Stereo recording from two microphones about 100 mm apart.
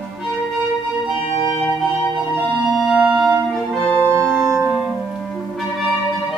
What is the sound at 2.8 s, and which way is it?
Music, 5° right (ahead or behind).